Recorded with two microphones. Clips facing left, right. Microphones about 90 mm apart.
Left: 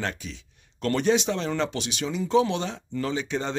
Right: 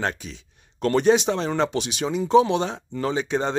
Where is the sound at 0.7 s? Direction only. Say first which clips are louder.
Right 5 dB; 20° right (ahead or behind).